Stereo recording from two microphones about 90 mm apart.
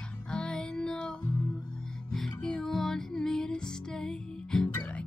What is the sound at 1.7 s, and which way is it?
Music, 5° left (ahead or behind).